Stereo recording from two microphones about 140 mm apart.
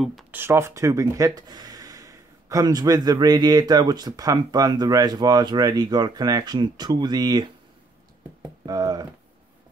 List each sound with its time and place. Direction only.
0.3 s speech: 15° right (ahead or behind)